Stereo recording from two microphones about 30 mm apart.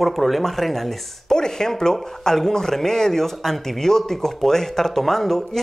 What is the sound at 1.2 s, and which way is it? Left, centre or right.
A woman's voice, left.